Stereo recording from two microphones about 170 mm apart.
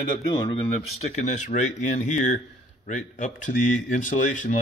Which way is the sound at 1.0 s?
45° left (ahead or behind).